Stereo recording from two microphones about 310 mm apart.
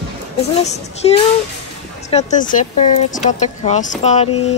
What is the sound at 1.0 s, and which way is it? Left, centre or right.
A woman's voice, centre.